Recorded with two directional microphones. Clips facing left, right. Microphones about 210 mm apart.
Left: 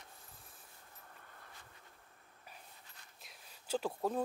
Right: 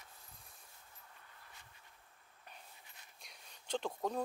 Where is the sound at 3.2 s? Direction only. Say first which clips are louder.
Left 2 dB; 5° left (ahead or behind).